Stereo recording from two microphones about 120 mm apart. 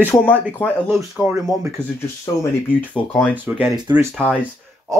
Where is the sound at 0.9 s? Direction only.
5° right (ahead or behind).